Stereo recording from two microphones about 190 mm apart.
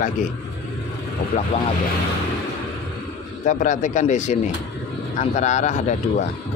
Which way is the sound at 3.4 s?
40° left (ahead or behind).